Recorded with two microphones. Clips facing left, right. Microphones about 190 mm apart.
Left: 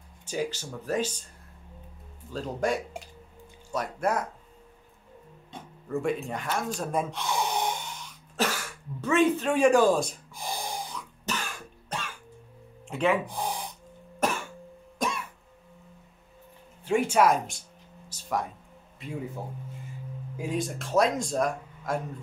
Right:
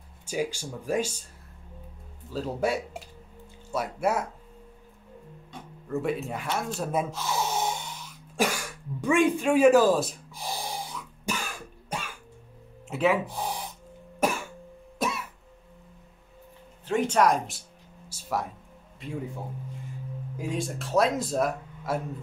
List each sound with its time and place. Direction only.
0.3 s speech: 10° right (ahead or behind)
2.3 s speech: 5° right (ahead or behind)
5.9 s gasp: centre (ahead or behind)
12.8 s speech: 5° right (ahead or behind)
14.2 s cough: 10° right (ahead or behind)
16.8 s a sound: 10° left (ahead or behind); by 18.5 s 5° right (ahead or behind)
20.3 s speech: centre (ahead or behind)